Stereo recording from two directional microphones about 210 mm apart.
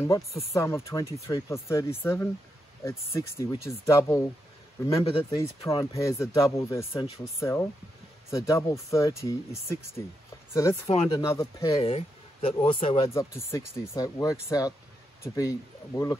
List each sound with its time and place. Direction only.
0.5 s speech: 15° left (ahead or behind)
4.8 s speech: 25° left (ahead or behind)
5.4 s speech: 15° left (ahead or behind)
11.8 s speech: 30° left (ahead or behind)
13.1 s speech: 15° left (ahead or behind)